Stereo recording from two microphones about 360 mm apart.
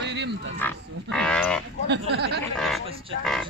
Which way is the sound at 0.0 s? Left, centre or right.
Right.